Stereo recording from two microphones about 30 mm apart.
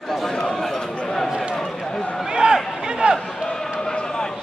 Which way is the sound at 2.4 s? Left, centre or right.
Right.